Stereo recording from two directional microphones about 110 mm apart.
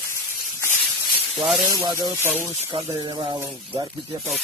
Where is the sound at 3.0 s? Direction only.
45° right (ahead or behind).